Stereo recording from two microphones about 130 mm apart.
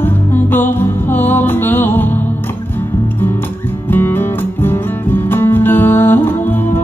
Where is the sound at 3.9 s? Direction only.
15° left (ahead or behind).